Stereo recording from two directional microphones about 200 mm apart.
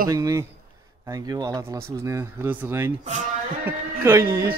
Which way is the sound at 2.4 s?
15° right (ahead or behind).